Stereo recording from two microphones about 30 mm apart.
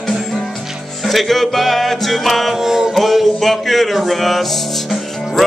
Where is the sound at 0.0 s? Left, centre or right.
Centre.